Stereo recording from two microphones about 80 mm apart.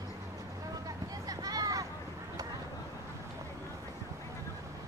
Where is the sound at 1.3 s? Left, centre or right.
Right.